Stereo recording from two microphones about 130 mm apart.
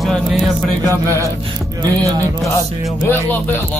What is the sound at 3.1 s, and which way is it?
Music, 15° left (ahead or behind).